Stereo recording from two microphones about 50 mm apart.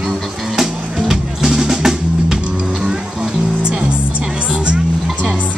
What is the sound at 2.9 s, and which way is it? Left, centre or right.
Music, centre.